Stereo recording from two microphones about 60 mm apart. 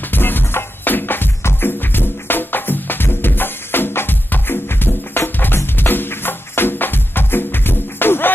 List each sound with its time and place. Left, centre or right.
0.1 s music: left